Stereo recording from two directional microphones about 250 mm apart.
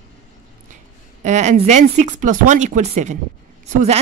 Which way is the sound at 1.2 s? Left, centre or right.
Right.